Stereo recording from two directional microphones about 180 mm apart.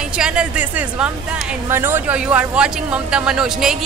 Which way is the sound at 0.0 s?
5° right (ahead or behind).